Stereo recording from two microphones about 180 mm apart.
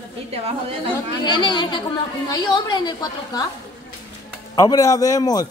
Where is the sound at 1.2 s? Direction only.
25° left (ahead or behind).